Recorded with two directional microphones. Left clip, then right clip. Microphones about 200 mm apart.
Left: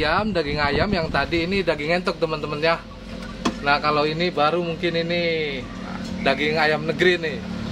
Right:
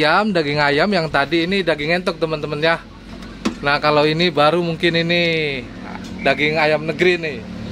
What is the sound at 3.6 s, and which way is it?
Speech, 40° right (ahead or behind).